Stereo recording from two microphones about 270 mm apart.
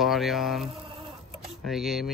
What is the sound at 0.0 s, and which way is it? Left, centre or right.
Speech, centre.